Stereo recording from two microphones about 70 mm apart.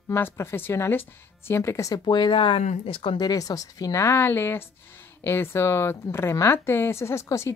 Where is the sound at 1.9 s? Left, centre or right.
Left.